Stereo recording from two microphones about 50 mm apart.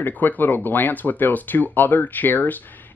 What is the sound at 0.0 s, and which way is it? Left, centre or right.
Speech, left.